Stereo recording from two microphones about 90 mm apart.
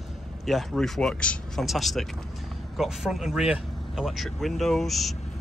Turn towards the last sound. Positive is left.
turn(degrees=0)  # may be behind; listen again after turning